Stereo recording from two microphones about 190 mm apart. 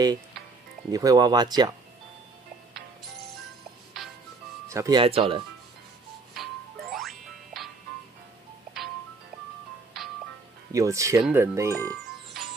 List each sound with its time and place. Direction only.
0.9 s speech: 20° right (ahead or behind)
4.6 s speech: 15° right (ahead or behind)
5.0 s speech: 30° right (ahead or behind)
6.3 s music: centre (ahead or behind)
10.7 s speech: 15° right (ahead or behind)